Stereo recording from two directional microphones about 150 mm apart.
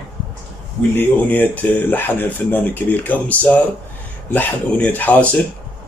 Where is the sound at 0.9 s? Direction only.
10° left (ahead or behind).